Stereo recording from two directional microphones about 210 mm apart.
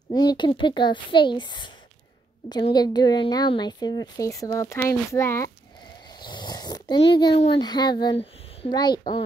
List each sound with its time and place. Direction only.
0.1 s a woman's voice: 20° left (ahead or behind)
6.0 s a sound: 20° left (ahead or behind)
7.2 s a woman's voice: 25° left (ahead or behind)